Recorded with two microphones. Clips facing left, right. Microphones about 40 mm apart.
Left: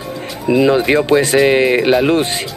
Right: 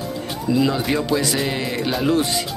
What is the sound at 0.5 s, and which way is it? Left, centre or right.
Speech, left.